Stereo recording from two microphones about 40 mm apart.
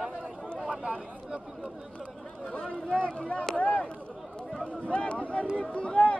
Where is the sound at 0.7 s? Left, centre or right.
Right.